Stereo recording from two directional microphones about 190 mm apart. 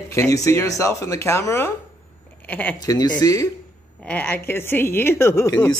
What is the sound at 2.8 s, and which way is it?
Speech, 20° left (ahead or behind).